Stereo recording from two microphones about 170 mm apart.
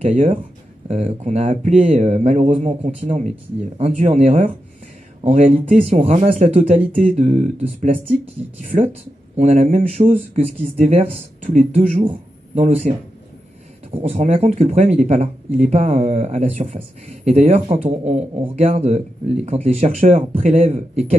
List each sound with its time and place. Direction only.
0.8 s speech: 40° right (ahead or behind)
8.5 s speech: 45° right (ahead or behind)